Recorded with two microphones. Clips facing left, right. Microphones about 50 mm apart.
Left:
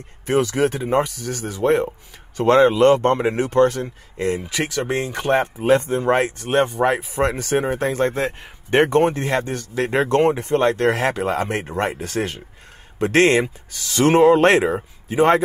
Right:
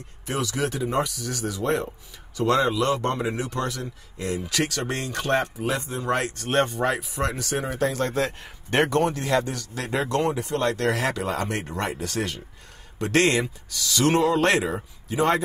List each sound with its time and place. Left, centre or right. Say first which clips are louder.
0.3 s speech: left 8 dB; left
4.5 s speech: left 3 dB; centre
5.7 s speech: left 14 dB; left
6.3 s speech: left 4 dB; centre
6.9 s speech: left 6 dB; left
9.0 s speech: left 3 dB; left